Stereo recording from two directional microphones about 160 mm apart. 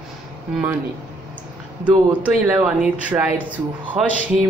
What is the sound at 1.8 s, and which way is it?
Speech, 10° right (ahead or behind).